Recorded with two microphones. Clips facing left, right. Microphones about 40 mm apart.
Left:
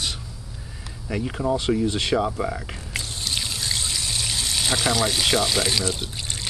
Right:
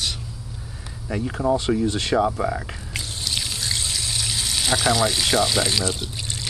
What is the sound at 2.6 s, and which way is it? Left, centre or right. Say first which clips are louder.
Pour: even; centre.